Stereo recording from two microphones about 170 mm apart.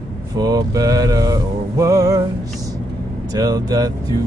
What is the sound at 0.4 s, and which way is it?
Music, 20° right (ahead or behind).